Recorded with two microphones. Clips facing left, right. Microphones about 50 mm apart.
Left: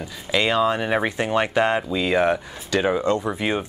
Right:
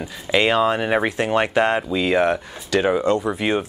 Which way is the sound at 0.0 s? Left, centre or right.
Centre.